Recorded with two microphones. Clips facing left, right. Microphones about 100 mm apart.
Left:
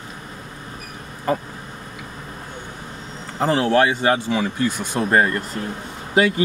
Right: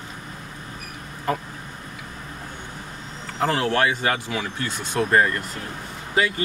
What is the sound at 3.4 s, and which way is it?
Speech, 20° left (ahead or behind).